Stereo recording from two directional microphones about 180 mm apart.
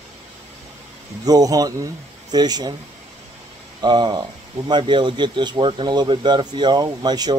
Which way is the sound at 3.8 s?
25° right (ahead or behind).